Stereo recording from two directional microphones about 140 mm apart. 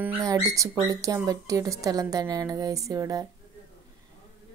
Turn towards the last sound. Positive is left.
turn(degrees=-25)  # may be behind; listen again after turning